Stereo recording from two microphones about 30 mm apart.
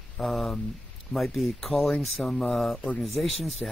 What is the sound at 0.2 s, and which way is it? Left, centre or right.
Speech, centre.